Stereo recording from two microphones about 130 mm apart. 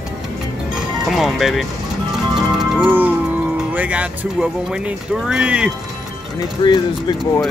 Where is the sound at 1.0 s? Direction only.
Centre (ahead or behind).